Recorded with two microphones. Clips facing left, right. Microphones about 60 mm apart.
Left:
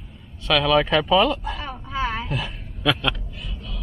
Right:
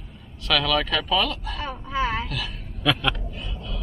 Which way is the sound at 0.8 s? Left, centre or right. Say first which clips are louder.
Left 6 dB; left.